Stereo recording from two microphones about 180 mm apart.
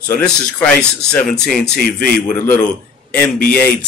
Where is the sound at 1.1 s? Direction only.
5° left (ahead or behind).